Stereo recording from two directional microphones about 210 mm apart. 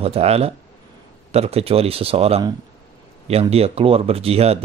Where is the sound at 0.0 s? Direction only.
30° right (ahead or behind).